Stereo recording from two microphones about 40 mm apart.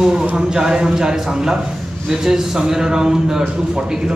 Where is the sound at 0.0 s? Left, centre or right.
Centre.